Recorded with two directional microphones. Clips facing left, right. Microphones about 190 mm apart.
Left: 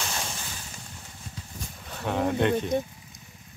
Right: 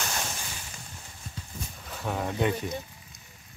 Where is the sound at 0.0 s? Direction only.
Centre (ahead or behind).